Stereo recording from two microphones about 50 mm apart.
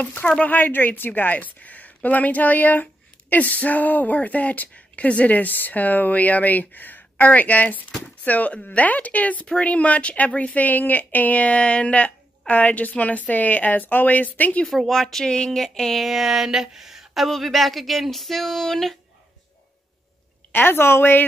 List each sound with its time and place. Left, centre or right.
0.0 s speech: left
14.7 s speech: centre
16.1 s speech: centre
20.5 s a woman's voice: left